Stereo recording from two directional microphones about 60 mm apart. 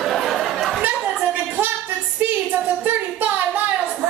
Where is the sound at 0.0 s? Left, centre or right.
Centre.